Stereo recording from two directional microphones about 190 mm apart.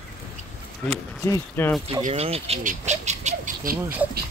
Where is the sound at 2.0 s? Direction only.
35° right (ahead or behind).